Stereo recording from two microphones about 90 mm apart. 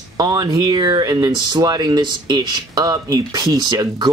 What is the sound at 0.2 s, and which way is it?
Speech, 45° right (ahead or behind).